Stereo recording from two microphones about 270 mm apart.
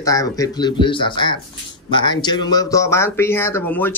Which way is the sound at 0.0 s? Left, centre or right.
Centre.